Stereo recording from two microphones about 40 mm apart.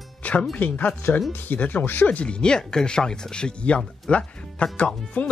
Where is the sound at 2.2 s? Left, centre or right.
Left.